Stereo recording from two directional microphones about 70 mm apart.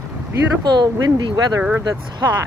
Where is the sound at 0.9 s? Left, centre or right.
Right.